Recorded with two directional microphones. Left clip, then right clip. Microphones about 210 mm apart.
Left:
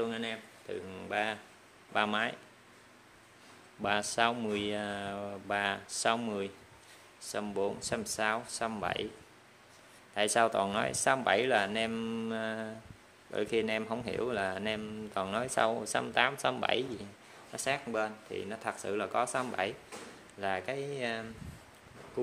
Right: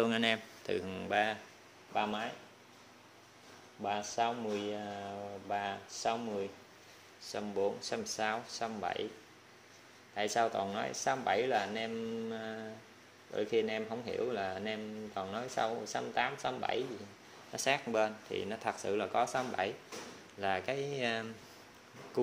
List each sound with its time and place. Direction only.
0.0 s speech: 25° right (ahead or behind)
0.9 s speech: 10° right (ahead or behind)
2.0 s a man's voice: 25° left (ahead or behind)
3.8 s a man's voice: 25° left (ahead or behind)
10.1 s a man's voice: 20° left (ahead or behind)
17.5 s speech: centre (ahead or behind)